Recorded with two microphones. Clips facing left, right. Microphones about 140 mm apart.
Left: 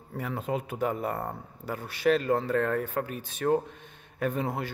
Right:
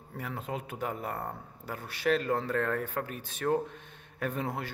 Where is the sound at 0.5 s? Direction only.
25° left (ahead or behind).